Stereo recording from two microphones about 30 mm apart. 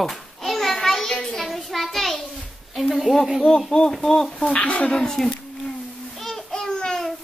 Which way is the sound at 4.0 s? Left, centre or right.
Centre.